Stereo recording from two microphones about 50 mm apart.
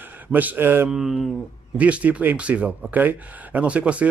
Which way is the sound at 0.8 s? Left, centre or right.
Centre.